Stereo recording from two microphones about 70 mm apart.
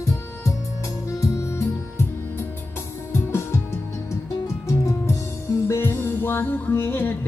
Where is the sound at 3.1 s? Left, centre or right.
Left.